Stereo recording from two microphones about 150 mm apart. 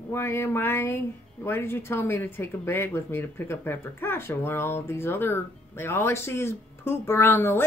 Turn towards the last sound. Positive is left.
turn(degrees=15)  # may be behind; listen again after turning